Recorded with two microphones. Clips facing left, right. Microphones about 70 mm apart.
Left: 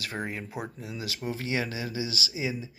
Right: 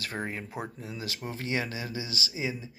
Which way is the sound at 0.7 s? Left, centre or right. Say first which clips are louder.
Left 1 dB; right.